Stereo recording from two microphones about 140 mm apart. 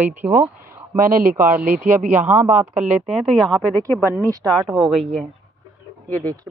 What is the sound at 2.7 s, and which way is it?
Speech, 60° right (ahead or behind).